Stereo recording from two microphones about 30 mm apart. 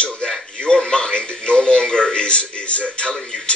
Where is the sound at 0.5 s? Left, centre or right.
Left.